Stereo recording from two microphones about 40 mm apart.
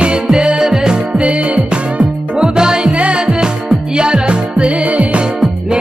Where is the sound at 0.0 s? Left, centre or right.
Right.